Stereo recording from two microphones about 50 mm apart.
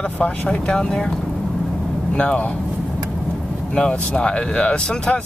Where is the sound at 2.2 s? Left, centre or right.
Left.